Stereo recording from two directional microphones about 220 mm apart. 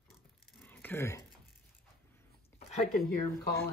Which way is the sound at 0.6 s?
10° left (ahead or behind).